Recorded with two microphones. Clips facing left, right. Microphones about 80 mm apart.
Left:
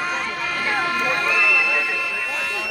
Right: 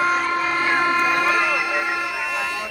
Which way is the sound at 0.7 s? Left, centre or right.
Centre.